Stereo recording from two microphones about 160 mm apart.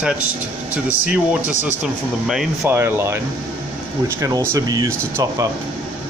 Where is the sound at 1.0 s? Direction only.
5° right (ahead or behind).